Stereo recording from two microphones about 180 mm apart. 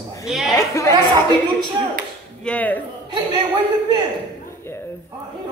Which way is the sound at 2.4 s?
10° left (ahead or behind).